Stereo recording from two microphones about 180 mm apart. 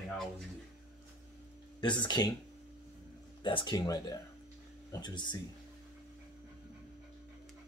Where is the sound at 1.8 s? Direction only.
25° left (ahead or behind).